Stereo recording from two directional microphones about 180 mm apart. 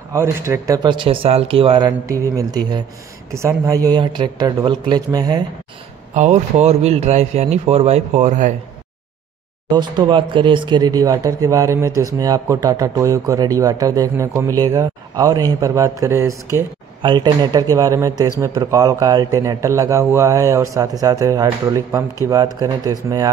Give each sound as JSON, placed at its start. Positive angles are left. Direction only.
{"t": 0.1, "sound": "a man's voice", "side_deg": -15}
{"t": 0.8, "sound": "a man's voice", "side_deg": -30}
{"t": 6.1, "sound": "a man's voice", "side_deg": -40}
{"t": 9.7, "sound": "a man's voice", "side_deg": -25}